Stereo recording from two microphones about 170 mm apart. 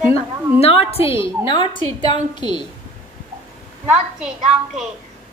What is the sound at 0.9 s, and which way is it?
A woman's voice, 35° left (ahead or behind).